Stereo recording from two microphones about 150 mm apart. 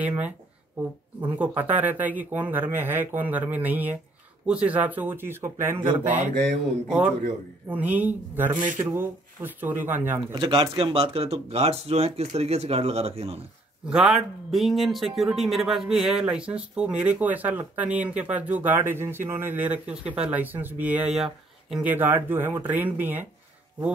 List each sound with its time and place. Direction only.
0.0 s speech: 10° right (ahead or behind)
5.9 s mantra: 55° right (ahead or behind)
7.6 s speech: 10° right (ahead or behind)
10.4 s speech: 35° right (ahead or behind)
13.8 s speech: 5° right (ahead or behind)